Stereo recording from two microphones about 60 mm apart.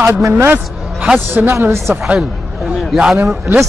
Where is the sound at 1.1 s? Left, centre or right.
Right.